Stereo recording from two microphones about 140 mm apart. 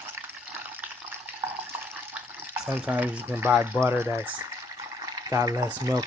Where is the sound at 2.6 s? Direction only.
10° right (ahead or behind).